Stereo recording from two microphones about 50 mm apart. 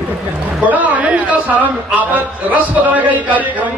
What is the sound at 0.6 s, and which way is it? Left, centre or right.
A man's voice, right.